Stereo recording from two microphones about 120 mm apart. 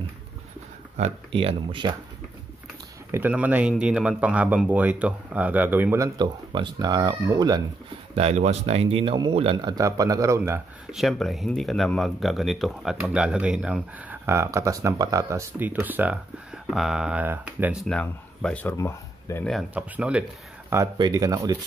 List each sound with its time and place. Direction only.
1.3 s speech: 45° right (ahead or behind)
3.1 s speech: 15° right (ahead or behind)
5.9 s speech: 30° right (ahead or behind)
8.2 s speech: 65° right (ahead or behind); by 9.8 s 45° right (ahead or behind)
9.8 s speech: 30° right (ahead or behind)
10.9 s speech: centre (ahead or behind)
14.2 s speech: 20° right (ahead or behind)
15.6 s speech: 15° right (ahead or behind)
17.8 s speech: 5° left (ahead or behind)
18.8 s speech: 25° left (ahead or behind)
19.7 s speech: 10° right (ahead or behind)
21.0 s speech: 30° right (ahead or behind)